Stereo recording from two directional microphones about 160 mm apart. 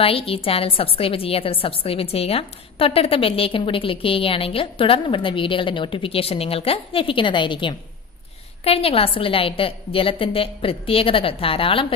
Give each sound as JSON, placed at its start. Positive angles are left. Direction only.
{"t": 0.0, "sound": "a woman's voice", "side_deg": 35}